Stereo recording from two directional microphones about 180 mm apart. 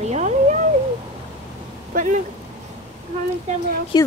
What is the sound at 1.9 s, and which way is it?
Speech, 45° right (ahead or behind).